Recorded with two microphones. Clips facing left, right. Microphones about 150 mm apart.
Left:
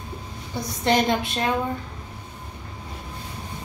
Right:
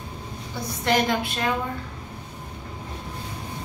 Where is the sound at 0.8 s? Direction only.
25° left (ahead or behind).